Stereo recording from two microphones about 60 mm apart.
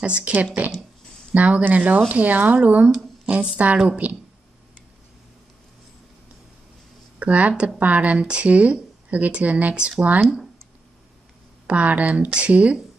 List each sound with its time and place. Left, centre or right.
0.0 s speech: right
7.2 s speech: right
11.6 s speech: right